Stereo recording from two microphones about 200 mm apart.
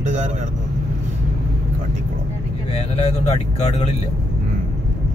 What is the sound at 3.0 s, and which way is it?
Speech, 30° left (ahead or behind).